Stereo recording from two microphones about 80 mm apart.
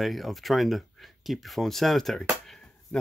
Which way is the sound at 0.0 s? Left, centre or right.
Centre.